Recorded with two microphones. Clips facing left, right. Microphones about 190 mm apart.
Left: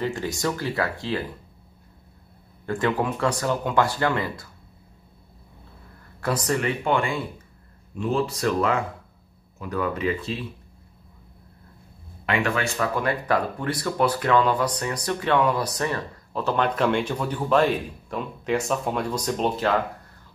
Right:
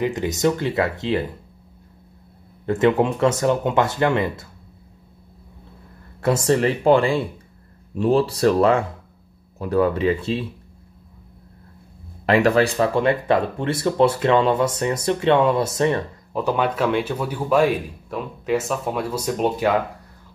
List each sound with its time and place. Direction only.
0.0 s speech: 20° right (ahead or behind)
2.6 s speech: 20° right (ahead or behind)
6.2 s speech: 25° right (ahead or behind)
12.3 s speech: 35° right (ahead or behind)
16.4 s speech: 10° right (ahead or behind)